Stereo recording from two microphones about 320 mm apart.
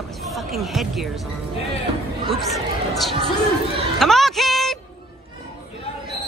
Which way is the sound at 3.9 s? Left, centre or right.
Centre.